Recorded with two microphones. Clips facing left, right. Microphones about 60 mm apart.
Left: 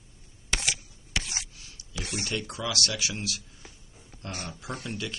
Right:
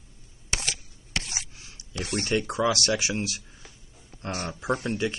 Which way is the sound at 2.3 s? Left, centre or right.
Right.